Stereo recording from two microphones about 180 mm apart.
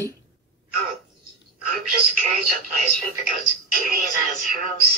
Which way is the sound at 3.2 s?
50° right (ahead or behind).